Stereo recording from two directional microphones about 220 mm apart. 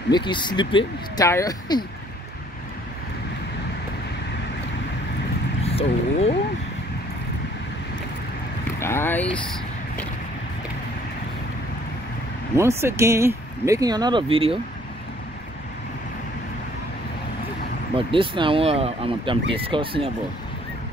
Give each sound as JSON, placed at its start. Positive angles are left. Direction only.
{"t": 0.1, "sound": "speech", "side_deg": 20}
{"t": 5.6, "sound": "speech", "side_deg": 30}
{"t": 8.7, "sound": "speech", "side_deg": 10}
{"t": 12.5, "sound": "speech", "side_deg": -10}
{"t": 17.9, "sound": "speech", "side_deg": -25}